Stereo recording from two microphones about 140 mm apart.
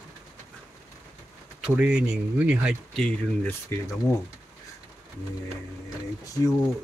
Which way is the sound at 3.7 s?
15° left (ahead or behind).